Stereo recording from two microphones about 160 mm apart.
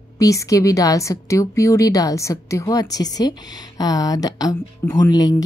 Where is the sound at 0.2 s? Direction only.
20° left (ahead or behind).